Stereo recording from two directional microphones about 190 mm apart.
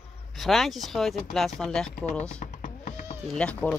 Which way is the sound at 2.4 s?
45° left (ahead or behind).